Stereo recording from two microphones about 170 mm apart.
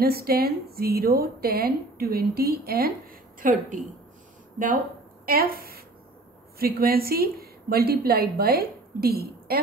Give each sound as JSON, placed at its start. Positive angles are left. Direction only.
{"t": 0.0, "sound": "a woman's voice", "side_deg": -65}
{"t": 5.2, "sound": "a woman's voice", "side_deg": -60}